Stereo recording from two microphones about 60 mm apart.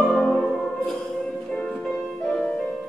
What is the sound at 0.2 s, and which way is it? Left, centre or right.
Music, centre.